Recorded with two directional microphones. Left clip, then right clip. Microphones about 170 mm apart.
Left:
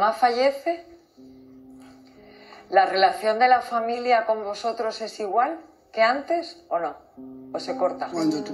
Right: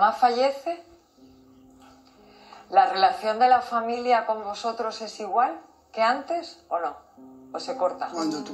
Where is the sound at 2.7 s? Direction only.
35° left (ahead or behind).